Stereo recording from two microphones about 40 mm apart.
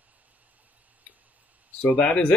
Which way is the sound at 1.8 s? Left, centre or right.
Left.